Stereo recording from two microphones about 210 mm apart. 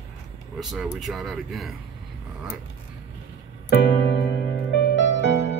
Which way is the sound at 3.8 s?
55° left (ahead or behind).